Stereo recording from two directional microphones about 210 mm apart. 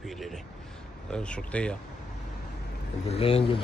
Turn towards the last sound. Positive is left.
turn(degrees=25)  # may be behind; listen again after turning